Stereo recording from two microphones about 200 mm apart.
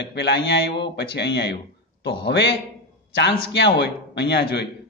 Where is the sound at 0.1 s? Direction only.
60° left (ahead or behind).